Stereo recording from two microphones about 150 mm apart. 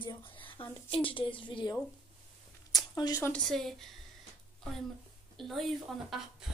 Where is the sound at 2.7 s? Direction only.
25° left (ahead or behind).